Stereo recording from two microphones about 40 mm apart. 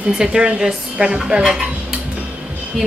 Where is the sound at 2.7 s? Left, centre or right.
Centre.